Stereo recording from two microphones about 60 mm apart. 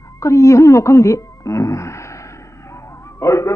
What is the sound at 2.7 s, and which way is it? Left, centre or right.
Music, left.